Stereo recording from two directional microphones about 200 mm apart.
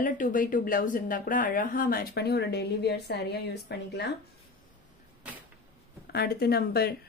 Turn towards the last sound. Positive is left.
turn(degrees=50)  # may be behind; listen again after turning